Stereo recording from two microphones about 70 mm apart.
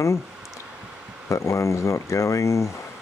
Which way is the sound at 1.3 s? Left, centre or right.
Left.